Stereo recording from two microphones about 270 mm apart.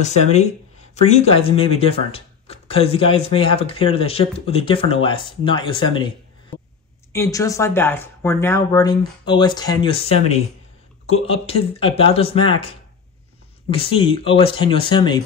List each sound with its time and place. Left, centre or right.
0.9 s speech: left